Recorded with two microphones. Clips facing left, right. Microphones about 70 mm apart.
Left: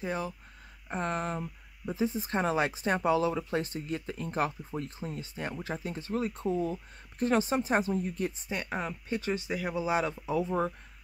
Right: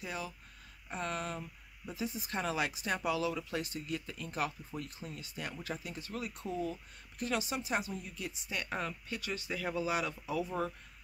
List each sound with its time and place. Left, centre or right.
0.0 s speech: left
8.5 s speech: centre